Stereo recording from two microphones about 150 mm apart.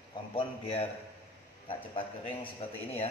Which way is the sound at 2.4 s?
40° left (ahead or behind).